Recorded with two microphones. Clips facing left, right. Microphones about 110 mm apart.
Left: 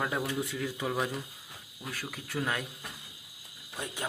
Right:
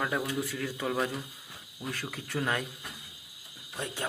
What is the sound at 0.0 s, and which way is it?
Speech, 15° left (ahead or behind).